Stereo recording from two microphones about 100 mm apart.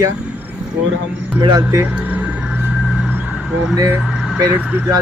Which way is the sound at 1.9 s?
15° right (ahead or behind).